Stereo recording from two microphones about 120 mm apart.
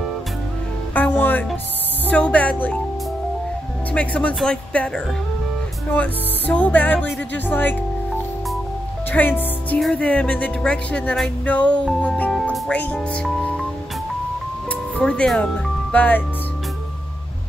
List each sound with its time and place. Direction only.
0.9 s music: 15° left (ahead or behind)
2.0 s speech: 10° left (ahead or behind)
3.9 s music: 10° left (ahead or behind)
9.1 s music: 15° left (ahead or behind)
12.5 s speech: 10° left (ahead or behind)
14.7 s music: 10° left (ahead or behind)